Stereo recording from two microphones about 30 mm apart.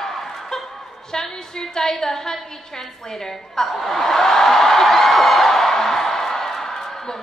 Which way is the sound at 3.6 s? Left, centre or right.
Centre.